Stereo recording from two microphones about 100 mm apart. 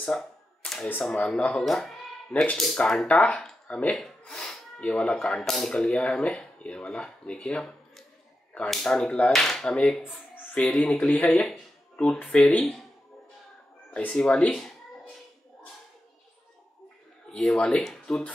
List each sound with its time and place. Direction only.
0.0 s typewriter: 10° left (ahead or behind)
1.1 s speech: 10° left (ahead or behind)
10.3 s a sound: 15° left (ahead or behind)
10.9 s speech: 15° left (ahead or behind)
13.9 s speech: 10° left (ahead or behind)
17.3 s speech: 5° left (ahead or behind)